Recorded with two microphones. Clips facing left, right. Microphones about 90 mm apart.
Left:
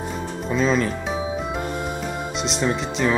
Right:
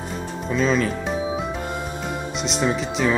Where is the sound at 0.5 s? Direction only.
Centre (ahead or behind).